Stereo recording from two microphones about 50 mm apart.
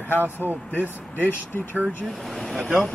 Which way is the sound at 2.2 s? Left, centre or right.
Centre.